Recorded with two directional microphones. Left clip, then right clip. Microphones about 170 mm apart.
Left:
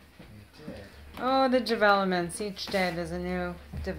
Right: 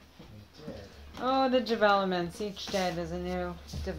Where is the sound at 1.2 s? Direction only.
10° left (ahead or behind).